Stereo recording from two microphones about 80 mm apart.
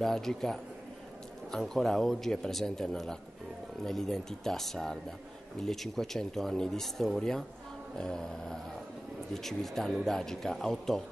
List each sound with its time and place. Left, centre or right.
0.0 s speech: centre